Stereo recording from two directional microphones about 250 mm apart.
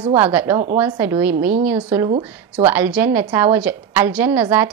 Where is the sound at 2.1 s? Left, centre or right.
Right.